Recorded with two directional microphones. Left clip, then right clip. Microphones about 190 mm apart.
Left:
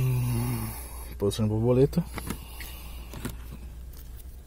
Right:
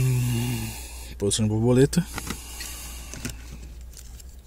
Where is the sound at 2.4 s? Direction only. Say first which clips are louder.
Right 6 dB; 45° right (ahead or behind).